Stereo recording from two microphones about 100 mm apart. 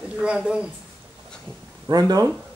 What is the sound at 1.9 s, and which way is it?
Speech, 40° right (ahead or behind).